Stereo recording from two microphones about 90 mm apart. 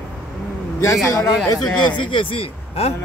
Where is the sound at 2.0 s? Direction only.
70° left (ahead or behind).